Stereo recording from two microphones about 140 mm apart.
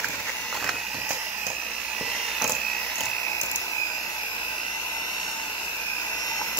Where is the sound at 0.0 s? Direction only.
Centre (ahead or behind).